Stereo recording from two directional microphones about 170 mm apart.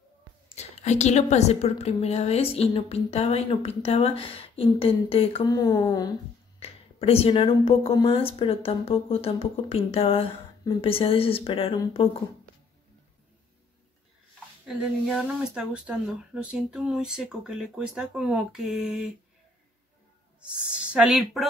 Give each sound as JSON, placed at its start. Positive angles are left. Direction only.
{"t": 0.6, "sound": "a woman's voice", "side_deg": 40}
{"t": 5.5, "sound": "a woman's voice", "side_deg": 20}
{"t": 6.6, "sound": "a woman's voice", "side_deg": 35}
{"t": 14.7, "sound": "speech", "side_deg": -5}
{"t": 20.3, "sound": "speech", "side_deg": -5}